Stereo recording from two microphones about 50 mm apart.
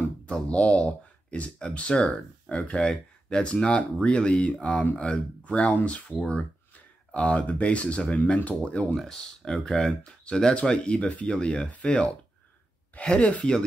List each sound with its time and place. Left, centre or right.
0.5 s speech: left
9.1 s speech: centre